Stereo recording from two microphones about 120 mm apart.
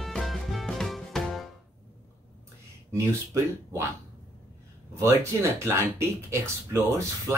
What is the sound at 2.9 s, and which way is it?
Speech, 25° right (ahead or behind).